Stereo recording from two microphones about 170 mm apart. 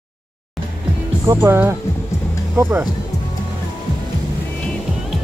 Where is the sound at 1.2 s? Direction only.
20° right (ahead or behind).